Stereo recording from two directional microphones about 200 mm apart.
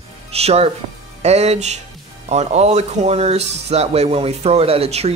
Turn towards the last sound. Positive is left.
turn(degrees=-30)  # may be behind; listen again after turning